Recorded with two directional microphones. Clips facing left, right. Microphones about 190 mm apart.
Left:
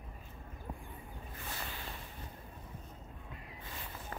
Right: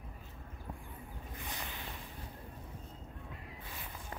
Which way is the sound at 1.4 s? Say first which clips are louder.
Left 1 dB; 15° right (ahead or behind).